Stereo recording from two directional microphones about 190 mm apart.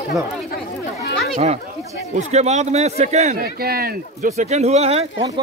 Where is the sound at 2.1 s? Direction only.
35° right (ahead or behind).